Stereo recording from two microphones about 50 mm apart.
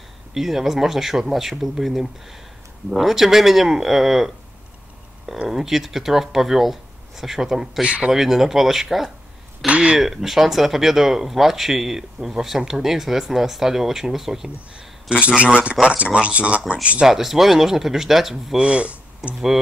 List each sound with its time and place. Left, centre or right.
0.3 s speech: centre
5.4 s speech: centre
7.8 s speech: right
8.1 s speech: centre
9.7 s speech: right
9.9 s speech: centre
15.0 s speech: right
17.1 s speech: centre
18.6 s speech: right